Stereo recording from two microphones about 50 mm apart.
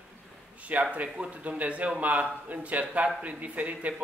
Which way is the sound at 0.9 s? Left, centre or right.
Right.